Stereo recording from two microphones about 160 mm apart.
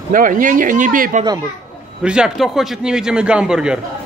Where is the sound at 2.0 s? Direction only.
5° right (ahead or behind).